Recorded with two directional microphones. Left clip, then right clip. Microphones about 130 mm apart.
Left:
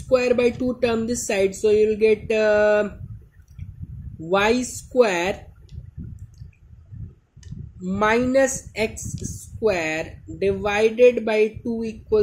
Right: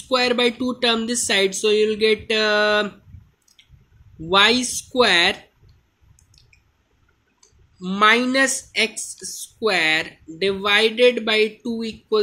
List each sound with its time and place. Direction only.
0.1 s speech: centre (ahead or behind)
4.3 s speech: centre (ahead or behind)
7.8 s speech: centre (ahead or behind)